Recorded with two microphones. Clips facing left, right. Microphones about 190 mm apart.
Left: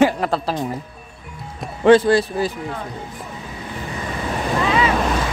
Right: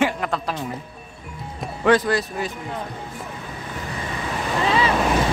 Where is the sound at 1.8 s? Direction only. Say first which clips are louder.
Left 6 dB; 30° left (ahead or behind).